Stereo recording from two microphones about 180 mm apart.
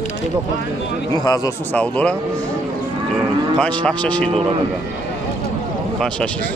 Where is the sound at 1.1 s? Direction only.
20° left (ahead or behind).